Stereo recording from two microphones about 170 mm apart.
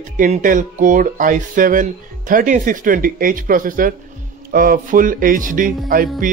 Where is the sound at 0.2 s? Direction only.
50° right (ahead or behind).